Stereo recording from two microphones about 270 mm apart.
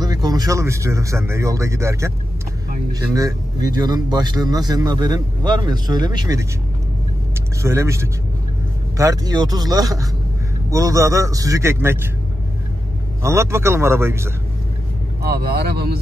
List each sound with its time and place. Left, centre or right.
0.0 s a man's voice: centre
7.6 s a man's voice: centre
13.2 s a man's voice: centre
15.2 s speech: right